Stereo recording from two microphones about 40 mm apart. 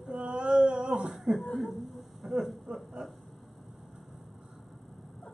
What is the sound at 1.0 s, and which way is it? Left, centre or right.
Chuckle, centre.